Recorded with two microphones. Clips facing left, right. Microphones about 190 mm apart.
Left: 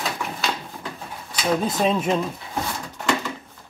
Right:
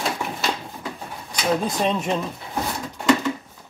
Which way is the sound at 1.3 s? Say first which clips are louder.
Even; centre (ahead or behind).